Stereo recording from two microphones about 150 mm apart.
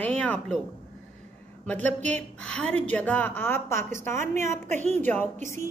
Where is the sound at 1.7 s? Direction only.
10° left (ahead or behind).